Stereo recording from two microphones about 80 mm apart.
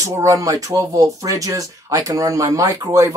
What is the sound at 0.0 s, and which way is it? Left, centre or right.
Speech, right.